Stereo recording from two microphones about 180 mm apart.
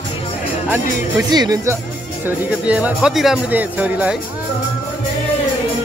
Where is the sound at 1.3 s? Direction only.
20° right (ahead or behind).